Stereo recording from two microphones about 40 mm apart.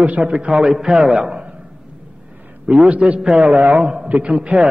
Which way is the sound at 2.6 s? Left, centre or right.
Right.